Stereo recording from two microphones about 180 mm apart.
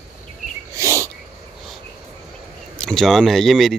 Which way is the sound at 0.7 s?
15° right (ahead or behind).